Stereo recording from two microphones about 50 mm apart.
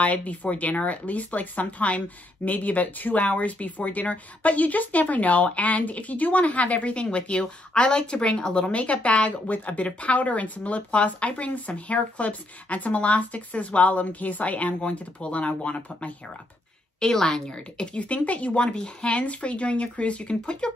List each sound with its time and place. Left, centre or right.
0.0 s speech: left
17.0 s a woman's voice: centre
17.7 s speech: left